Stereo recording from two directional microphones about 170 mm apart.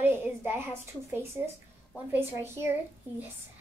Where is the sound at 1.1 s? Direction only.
15° right (ahead or behind).